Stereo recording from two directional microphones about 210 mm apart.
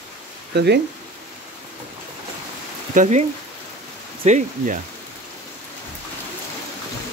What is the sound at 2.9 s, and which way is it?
Speech, 35° right (ahead or behind).